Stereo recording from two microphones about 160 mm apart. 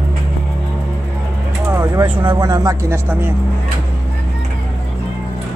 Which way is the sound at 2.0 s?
30° right (ahead or behind).